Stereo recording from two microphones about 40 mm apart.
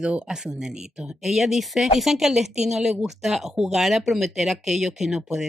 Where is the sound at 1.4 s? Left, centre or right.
Centre.